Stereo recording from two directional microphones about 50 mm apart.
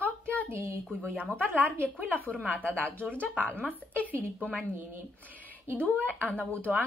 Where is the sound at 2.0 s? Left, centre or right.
Left.